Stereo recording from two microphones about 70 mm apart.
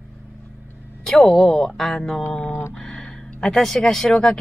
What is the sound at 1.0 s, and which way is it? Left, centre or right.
A woman's voice, centre.